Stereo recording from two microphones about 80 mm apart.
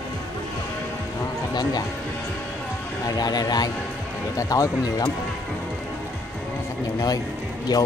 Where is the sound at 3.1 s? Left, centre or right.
Left.